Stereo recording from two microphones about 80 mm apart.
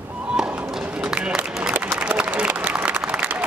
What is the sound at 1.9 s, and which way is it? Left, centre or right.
Applause, centre.